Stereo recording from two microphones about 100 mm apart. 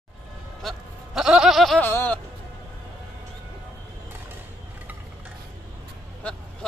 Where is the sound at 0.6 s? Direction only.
Centre (ahead or behind).